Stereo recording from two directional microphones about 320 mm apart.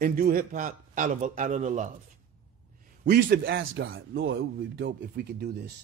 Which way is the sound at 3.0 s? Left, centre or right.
Right.